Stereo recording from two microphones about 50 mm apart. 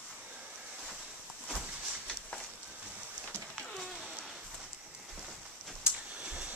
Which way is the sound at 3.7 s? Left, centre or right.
Centre.